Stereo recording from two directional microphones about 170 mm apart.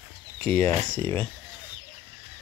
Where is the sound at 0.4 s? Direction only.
10° left (ahead or behind).